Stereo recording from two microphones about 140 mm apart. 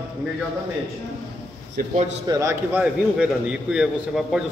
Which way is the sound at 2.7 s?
5° right (ahead or behind).